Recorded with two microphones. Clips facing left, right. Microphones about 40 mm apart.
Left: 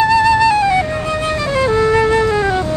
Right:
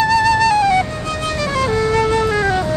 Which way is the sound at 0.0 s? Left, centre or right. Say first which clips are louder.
Left 2 dB; centre.